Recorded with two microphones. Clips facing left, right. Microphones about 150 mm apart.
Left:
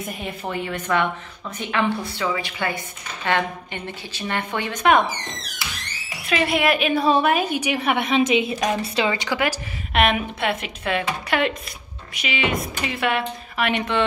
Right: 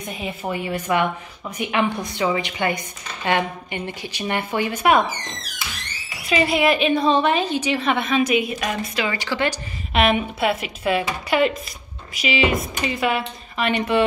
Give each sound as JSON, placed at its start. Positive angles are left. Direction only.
{"t": 0.0, "sound": "a woman's voice", "side_deg": 0}
{"t": 6.2, "sound": "a woman's voice", "side_deg": 0}
{"t": 9.9, "sound": "speech", "side_deg": 0}